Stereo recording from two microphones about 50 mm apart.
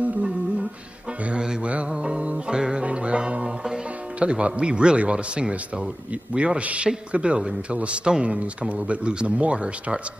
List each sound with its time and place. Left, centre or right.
1.3 s a man's voice: centre
2.0 s music: centre
4.2 s a man's voice: right